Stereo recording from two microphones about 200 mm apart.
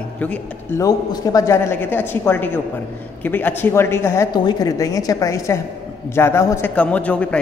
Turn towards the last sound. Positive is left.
turn(degrees=5)  # may be behind; listen again after turning